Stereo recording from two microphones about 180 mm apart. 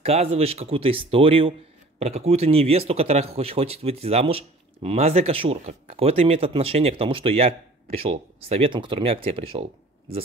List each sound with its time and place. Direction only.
0.0 s speech: 35° right (ahead or behind)